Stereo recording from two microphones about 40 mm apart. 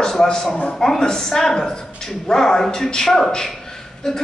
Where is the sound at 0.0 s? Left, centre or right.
Centre.